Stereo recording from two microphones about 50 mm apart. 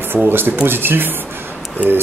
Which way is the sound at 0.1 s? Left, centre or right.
Right.